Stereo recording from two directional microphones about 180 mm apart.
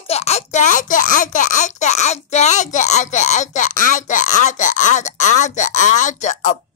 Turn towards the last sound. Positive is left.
turn(degrees=40)  # may be behind; listen again after turning